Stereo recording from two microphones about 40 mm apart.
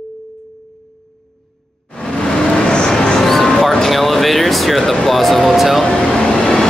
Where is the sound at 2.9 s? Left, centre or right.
Centre.